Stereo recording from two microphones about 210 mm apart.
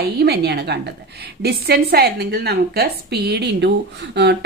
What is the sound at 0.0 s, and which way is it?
A woman's voice, 50° right (ahead or behind).